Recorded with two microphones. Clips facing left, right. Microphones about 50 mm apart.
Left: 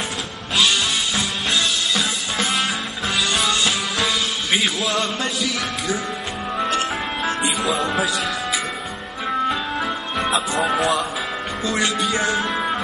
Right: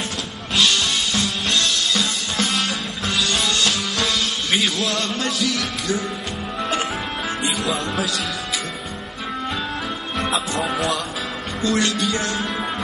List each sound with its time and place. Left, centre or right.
0.6 s music: centre
7.4 s speech: centre
10.1 s speech: centre